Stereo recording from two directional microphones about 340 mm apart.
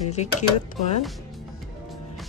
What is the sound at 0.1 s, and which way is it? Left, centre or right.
Speech, centre.